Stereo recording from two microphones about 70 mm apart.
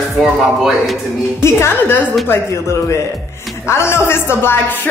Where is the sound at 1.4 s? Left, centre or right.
Left.